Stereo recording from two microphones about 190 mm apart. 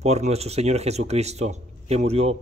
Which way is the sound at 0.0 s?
35° right (ahead or behind).